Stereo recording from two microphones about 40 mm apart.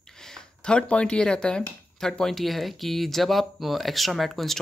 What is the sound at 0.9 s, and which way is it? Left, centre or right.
Speech, left.